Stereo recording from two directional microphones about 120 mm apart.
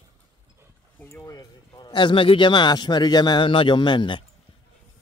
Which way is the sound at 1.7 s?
40° left (ahead or behind).